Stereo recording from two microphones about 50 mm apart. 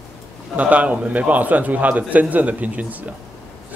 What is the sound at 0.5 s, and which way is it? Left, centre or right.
Speech, right.